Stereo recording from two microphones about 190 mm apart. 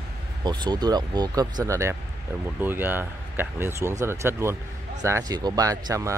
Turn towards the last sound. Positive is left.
turn(degrees=-20)  # may be behind; listen again after turning